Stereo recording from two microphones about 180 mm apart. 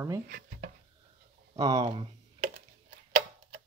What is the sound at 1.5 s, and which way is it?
Speech, 20° right (ahead or behind).